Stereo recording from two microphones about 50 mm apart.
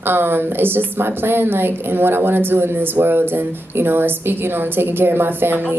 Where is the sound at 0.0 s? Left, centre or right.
Right.